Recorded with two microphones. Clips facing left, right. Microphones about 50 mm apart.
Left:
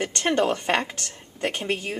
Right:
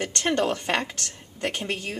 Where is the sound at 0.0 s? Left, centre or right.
Centre.